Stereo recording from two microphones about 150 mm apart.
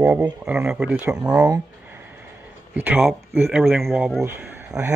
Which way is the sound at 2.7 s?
10° right (ahead or behind).